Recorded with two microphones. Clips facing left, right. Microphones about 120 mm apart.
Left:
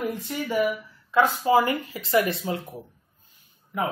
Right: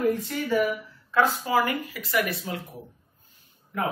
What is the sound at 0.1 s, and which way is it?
Speech, 15° left (ahead or behind).